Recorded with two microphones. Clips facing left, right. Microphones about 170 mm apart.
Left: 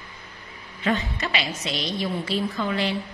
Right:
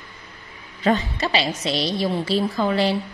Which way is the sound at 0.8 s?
35° right (ahead or behind).